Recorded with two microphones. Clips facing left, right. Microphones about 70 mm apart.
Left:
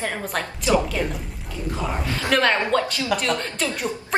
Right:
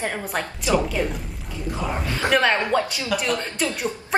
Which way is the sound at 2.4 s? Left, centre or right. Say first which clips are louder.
Even; centre.